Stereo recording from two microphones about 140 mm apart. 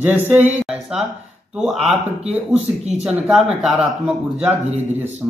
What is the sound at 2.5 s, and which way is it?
Speech, 50° right (ahead or behind).